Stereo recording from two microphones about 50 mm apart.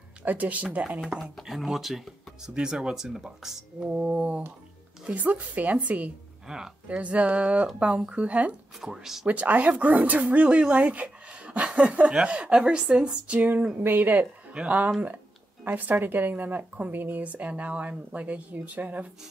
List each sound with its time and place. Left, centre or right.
0.2 s speech: right
1.3 s speech: centre
2.5 s speech: centre
3.8 s speech: right
6.4 s speech: centre
7.0 s speech: right
8.8 s speech: centre
9.3 s speech: right
13.4 s speech: right
14.5 s speech: right
17.2 s speech: right